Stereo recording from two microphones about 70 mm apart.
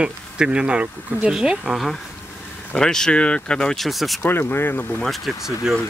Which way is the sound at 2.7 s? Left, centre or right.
Centre.